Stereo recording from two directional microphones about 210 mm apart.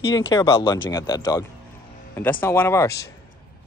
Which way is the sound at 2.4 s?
10° left (ahead or behind).